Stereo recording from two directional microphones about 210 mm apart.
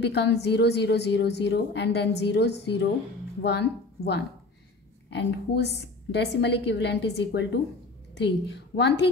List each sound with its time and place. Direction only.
0.0 s a woman's voice: 55° left (ahead or behind)